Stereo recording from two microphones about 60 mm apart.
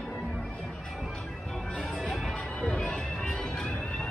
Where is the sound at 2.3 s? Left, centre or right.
Centre.